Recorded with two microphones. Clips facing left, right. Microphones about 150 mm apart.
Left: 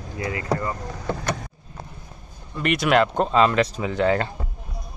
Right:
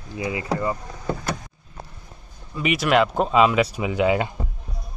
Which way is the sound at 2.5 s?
5° right (ahead or behind).